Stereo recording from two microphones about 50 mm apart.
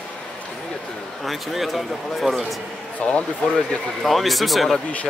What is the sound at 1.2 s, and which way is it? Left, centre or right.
Speech, centre.